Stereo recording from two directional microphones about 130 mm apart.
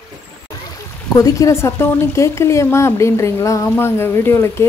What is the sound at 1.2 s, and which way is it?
Speech, 25° left (ahead or behind).